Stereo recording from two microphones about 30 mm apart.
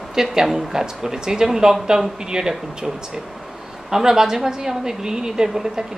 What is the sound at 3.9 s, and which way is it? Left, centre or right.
A woman's voice, centre.